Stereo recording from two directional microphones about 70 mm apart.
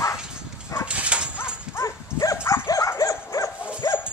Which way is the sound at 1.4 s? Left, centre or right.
Left.